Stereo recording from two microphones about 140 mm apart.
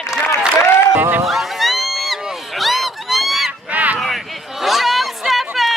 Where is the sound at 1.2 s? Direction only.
Centre (ahead or behind).